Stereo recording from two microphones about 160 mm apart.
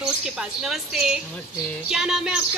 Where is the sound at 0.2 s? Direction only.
5° right (ahead or behind).